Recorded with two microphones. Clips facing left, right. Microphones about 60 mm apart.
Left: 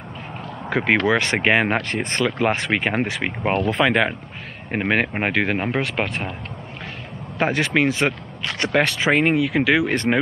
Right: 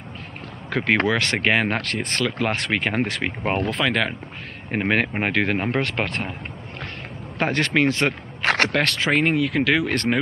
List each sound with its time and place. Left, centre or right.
0.7 s speech: centre
3.6 s speech: left
4.6 s speech: centre
7.3 s speech: centre
8.5 s speech: right
8.7 s speech: centre